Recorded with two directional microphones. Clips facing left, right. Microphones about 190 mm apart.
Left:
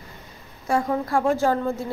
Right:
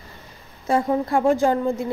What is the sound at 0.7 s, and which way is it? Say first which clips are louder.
A woman's voice: right 3 dB; 20° right (ahead or behind).